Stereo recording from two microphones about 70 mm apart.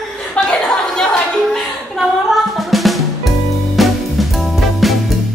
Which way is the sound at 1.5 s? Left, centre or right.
Centre.